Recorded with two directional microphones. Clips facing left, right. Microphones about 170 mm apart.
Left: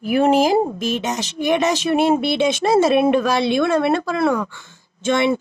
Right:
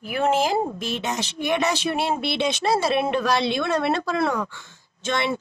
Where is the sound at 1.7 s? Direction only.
45° left (ahead or behind).